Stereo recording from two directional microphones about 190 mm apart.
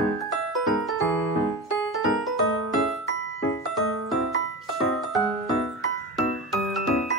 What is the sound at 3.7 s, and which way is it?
Music, centre (ahead or behind).